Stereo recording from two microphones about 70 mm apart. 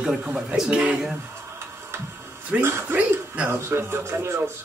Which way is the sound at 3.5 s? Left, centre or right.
Right.